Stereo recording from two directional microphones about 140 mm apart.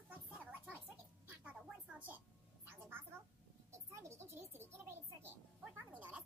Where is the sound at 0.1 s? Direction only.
10° right (ahead or behind).